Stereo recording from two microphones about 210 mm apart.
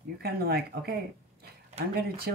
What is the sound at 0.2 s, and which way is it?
Speech, 50° right (ahead or behind).